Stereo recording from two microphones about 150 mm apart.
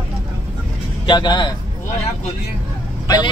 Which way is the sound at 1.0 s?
30° left (ahead or behind).